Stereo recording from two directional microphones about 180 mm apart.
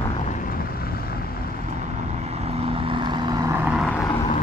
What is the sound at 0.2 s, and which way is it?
Vehicle, 45° left (ahead or behind).